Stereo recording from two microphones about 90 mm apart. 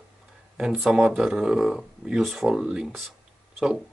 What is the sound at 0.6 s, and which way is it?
Speech, 10° right (ahead or behind).